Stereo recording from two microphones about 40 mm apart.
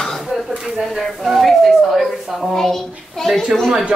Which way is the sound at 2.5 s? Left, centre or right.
Centre.